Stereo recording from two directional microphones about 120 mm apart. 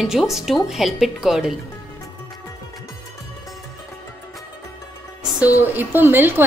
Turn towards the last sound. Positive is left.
turn(degrees=-15)  # may be behind; listen again after turning